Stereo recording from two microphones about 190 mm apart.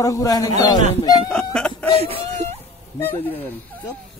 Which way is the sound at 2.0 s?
30° right (ahead or behind).